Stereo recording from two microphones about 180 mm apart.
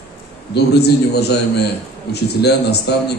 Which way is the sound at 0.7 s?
65° left (ahead or behind).